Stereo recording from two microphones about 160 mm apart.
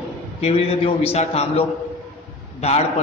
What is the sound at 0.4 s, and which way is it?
A man's voice, 40° left (ahead or behind).